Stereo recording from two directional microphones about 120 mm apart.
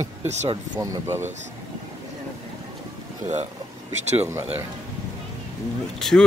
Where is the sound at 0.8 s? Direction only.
20° right (ahead or behind).